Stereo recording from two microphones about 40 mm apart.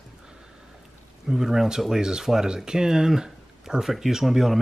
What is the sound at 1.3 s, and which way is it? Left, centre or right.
Speech, centre.